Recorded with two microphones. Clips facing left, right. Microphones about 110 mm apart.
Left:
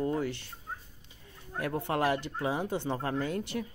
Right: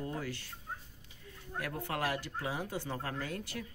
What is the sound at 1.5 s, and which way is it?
Speech, 25° left (ahead or behind).